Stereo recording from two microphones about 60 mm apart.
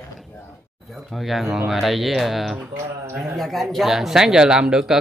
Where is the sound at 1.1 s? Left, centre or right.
Centre.